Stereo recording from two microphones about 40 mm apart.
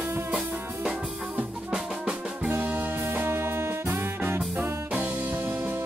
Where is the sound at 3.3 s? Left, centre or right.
Right.